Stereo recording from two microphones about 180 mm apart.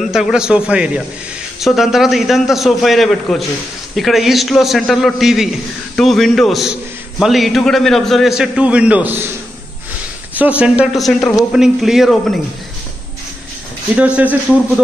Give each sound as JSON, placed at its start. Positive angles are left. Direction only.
{"t": 0.0, "sound": "a man's voice", "side_deg": 0}
{"t": 10.3, "sound": "a man's voice", "side_deg": -10}
{"t": 13.9, "sound": "a man's voice", "side_deg": -5}